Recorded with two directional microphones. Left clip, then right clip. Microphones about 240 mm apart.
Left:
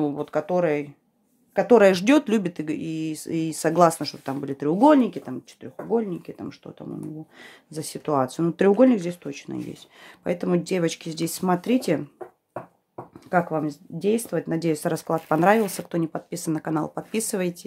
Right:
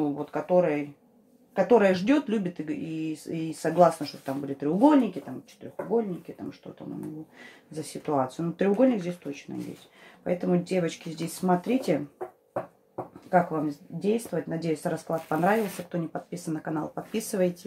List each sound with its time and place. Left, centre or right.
0.0 s speech: left
6.3 s speech: left
7.7 s speech: left
13.3 s speech: left